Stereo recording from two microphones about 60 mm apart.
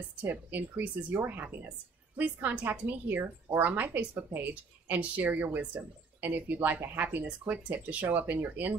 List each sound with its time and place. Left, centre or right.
0.2 s a woman's voice: right